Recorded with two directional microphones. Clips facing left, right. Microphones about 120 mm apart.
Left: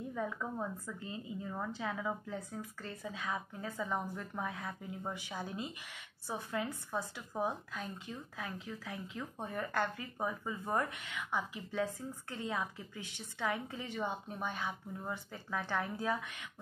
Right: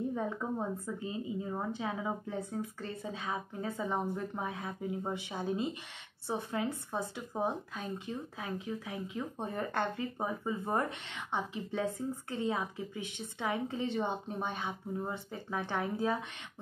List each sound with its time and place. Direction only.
0.1 s speech: 25° right (ahead or behind)